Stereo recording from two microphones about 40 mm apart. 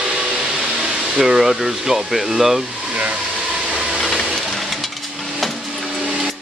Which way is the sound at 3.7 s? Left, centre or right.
Centre.